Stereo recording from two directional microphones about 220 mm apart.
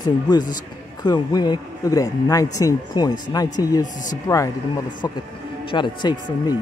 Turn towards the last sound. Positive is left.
turn(degrees=20)  # may be behind; listen again after turning